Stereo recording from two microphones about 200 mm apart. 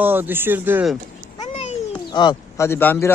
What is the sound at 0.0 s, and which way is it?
Speech, 10° right (ahead or behind).